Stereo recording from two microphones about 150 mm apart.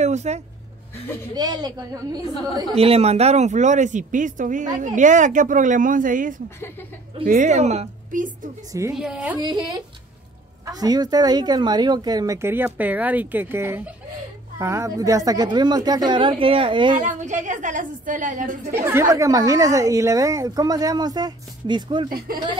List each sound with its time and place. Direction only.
0.0 s a sound: 50° right (ahead or behind)
1.3 s a woman's voice: 25° right (ahead or behind)
2.7 s a woman's voice: 40° right (ahead or behind); by 8.5 s 60° right (ahead or behind)
8.9 s a woman's voice: 5° right (ahead or behind)
9.4 s a woman's voice: 25° right (ahead or behind)
17.0 s a woman's voice: 55° right (ahead or behind)
18.7 s a woman's voice: 15° right (ahead or behind)
22.3 s speech: 85° right